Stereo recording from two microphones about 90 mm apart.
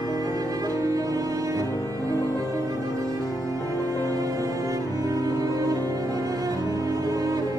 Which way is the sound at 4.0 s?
40° right (ahead or behind).